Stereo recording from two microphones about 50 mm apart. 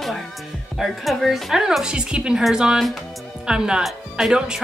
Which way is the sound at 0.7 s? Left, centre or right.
Centre.